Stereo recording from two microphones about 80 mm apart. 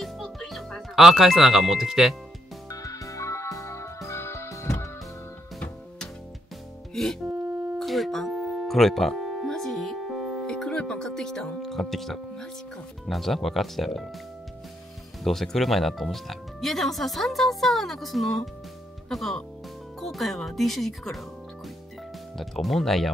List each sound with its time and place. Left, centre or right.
0.0 s music: centre
2.7 s music: left
6.9 s music: centre
13.0 s speech: centre
15.2 s speech: centre
22.4 s speech: centre